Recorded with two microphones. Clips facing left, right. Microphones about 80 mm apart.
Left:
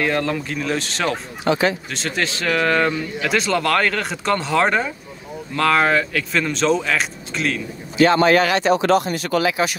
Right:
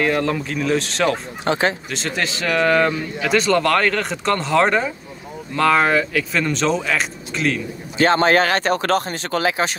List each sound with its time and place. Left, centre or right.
0.0 s speech: centre
1.4 s speech: right
1.9 s speech: centre
8.0 s speech: right